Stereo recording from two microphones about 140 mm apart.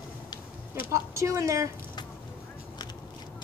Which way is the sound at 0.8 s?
20° right (ahead or behind).